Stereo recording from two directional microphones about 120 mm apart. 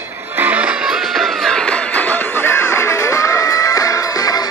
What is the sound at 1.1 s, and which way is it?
Music, 5° left (ahead or behind).